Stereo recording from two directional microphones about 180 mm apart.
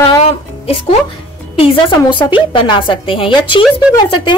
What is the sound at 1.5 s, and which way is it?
A woman's voice, 25° left (ahead or behind).